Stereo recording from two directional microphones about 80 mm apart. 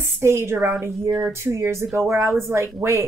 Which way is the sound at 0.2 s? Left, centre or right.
Right.